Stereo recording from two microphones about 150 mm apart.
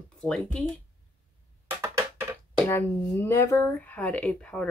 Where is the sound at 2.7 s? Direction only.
15° left (ahead or behind).